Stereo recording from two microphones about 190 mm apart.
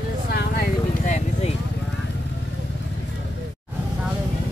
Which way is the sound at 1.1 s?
35° left (ahead or behind).